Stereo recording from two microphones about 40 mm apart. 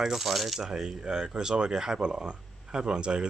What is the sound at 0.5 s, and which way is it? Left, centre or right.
Speech, centre.